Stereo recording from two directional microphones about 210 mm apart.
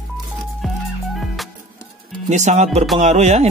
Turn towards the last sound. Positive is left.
turn(degrees=-30)  # may be behind; listen again after turning